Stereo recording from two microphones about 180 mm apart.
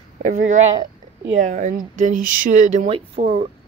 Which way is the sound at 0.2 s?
45° right (ahead or behind).